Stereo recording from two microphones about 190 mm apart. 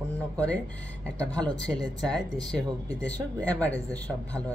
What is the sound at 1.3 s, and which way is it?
Speech, 5° left (ahead or behind).